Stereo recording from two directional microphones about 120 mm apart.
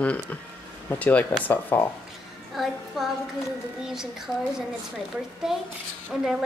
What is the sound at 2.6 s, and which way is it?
Female singing, 5° right (ahead or behind).